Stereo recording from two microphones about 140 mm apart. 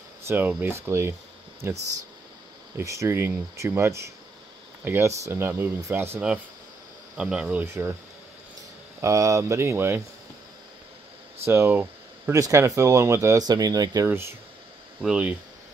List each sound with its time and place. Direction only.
0.3 s speech: 10° right (ahead or behind)
2.8 s speech: 20° right (ahead or behind)
9.0 s speech: 25° right (ahead or behind)
11.4 s speech: 15° right (ahead or behind)
15.0 s speech: 5° right (ahead or behind)